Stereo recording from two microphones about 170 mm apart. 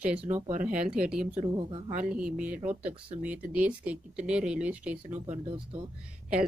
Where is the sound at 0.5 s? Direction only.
50° right (ahead or behind).